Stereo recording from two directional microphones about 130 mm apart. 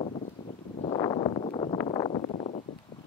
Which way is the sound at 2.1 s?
65° left (ahead or behind).